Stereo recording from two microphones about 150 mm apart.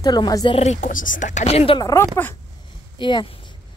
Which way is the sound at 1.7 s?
25° left (ahead or behind).